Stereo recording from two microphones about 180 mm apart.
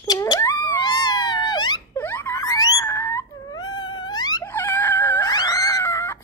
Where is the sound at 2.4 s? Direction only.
20° left (ahead or behind).